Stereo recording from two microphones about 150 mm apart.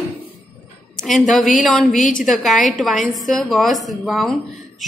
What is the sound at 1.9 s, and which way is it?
Speech, 60° left (ahead or behind).